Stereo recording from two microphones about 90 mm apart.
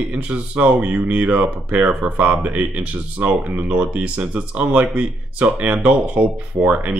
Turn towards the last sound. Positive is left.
turn(degrees=-15)  # may be behind; listen again after turning